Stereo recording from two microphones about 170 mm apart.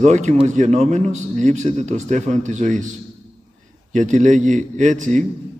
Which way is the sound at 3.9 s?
45° right (ahead or behind).